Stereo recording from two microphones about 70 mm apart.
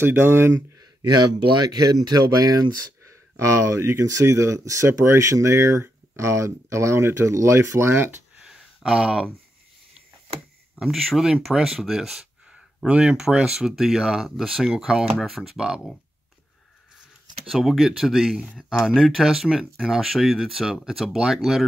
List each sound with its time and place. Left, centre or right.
0.0 s speech: right
1.7 s speech: right
3.0 s speech: right
8.4 s a sound: centre
10.8 s speech: centre
17.5 s speech: centre